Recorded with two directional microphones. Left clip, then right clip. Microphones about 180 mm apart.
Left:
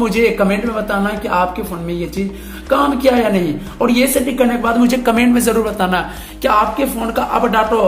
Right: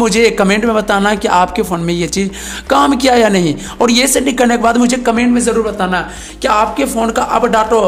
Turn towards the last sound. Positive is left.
turn(degrees=-25)  # may be behind; listen again after turning